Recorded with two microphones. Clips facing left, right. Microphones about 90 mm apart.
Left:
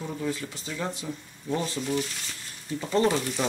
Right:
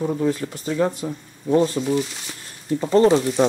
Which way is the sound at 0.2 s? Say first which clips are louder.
Right 9 dB; 45° right (ahead or behind).